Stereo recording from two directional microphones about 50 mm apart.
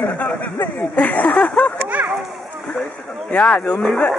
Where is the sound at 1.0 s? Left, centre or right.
Left.